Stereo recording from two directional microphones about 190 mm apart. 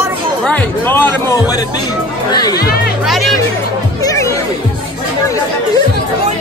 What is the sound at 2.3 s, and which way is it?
Speech, 20° left (ahead or behind).